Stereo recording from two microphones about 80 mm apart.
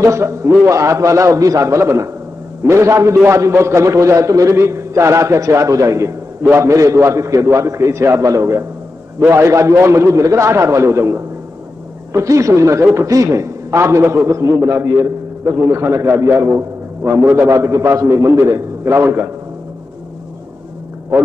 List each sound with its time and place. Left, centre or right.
0.0 s a man's voice: right
17.5 s a man's voice: right